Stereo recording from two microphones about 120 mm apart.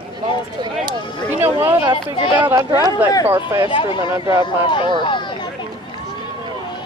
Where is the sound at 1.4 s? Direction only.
20° right (ahead or behind).